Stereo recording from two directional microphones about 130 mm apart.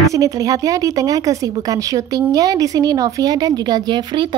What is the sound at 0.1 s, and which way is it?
A woman's voice, 25° right (ahead or behind).